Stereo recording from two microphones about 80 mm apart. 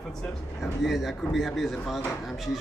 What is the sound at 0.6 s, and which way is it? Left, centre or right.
A man's voice, centre.